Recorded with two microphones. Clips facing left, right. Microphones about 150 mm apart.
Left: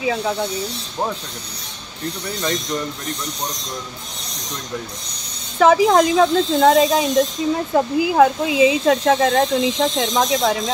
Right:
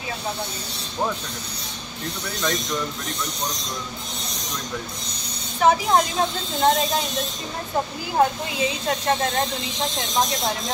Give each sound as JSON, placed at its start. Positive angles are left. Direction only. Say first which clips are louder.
{"t": 5.6, "sound": "speech", "louder": "left 5 dB", "side_deg": 90}